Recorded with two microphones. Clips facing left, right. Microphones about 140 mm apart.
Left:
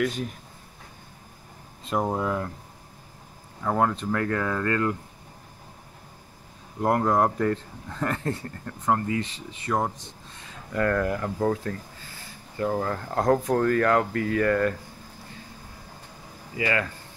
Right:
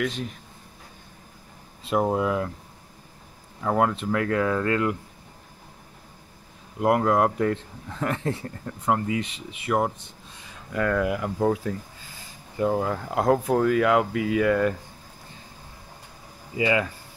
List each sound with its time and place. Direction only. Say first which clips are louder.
0.0 s speech: left 1 dB; centre (ahead or behind)
1.9 s speech: right 3 dB; 5° right (ahead or behind)
3.6 s speech: right 1 dB; 10° right (ahead or behind)
6.8 s speech: right 2 dB; 5° right (ahead or behind)
16.5 s speech: right 3 dB; 15° right (ahead or behind)